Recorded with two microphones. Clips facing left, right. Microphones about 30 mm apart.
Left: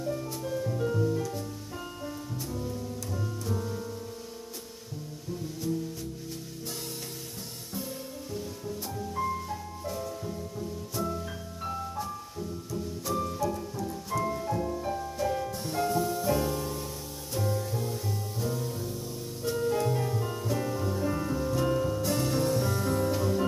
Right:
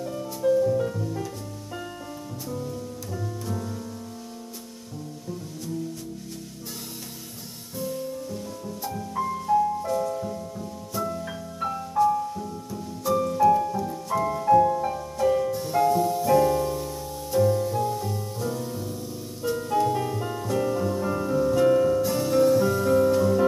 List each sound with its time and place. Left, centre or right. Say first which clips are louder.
0.0 s music: right 4 dB; centre
0.5 s music: right 13 dB; centre
3.4 s music: right 1 dB; centre
7.7 s music: right 8 dB; centre
11.2 s music: right 6 dB; right
13.1 s music: right 10 dB; centre
13.5 s music: right 14 dB; right
14.1 s music: right 11 dB; centre
15.8 s music: right 6 dB; centre
21.6 s music: right 9 dB; centre
22.0 s music: right 7 dB; centre